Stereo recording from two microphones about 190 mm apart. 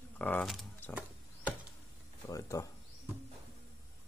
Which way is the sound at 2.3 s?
15° left (ahead or behind).